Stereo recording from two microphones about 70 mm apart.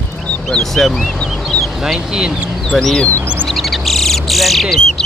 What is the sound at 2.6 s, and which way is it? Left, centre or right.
Speech, centre.